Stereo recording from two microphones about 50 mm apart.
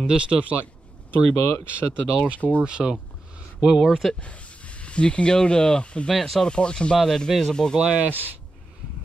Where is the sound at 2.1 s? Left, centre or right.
Right.